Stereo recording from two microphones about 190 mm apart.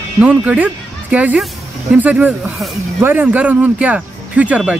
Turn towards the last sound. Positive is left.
turn(degrees=-5)  # may be behind; listen again after turning